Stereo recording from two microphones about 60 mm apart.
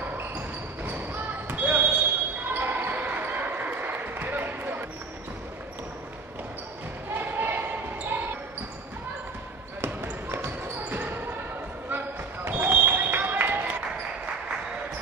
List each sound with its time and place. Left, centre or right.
0.8 s basketball bounce: right
7.2 s basketball bounce: right
10.0 s basketball bounce: right
12.4 s a sound: right